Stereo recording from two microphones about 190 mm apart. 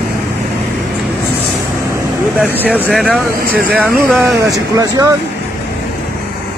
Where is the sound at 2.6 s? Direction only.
10° right (ahead or behind).